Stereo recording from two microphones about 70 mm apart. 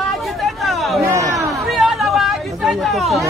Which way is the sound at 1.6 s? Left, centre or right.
Centre.